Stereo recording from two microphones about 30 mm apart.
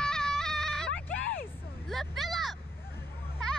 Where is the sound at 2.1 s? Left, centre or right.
Centre.